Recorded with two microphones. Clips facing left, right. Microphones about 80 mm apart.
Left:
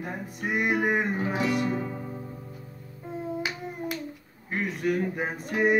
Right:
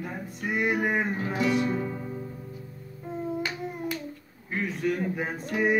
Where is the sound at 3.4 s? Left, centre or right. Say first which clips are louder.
Right 1 dB; centre.